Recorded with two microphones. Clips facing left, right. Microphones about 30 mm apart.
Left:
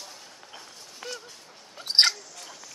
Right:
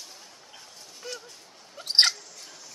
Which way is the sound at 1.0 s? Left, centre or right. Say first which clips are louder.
Left 1 dB; left.